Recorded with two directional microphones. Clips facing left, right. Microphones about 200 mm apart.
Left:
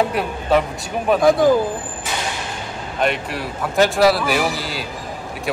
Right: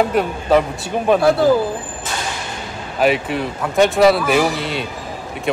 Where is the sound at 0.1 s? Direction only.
Centre (ahead or behind).